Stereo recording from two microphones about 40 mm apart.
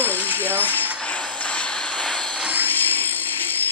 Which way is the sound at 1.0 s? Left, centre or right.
Left.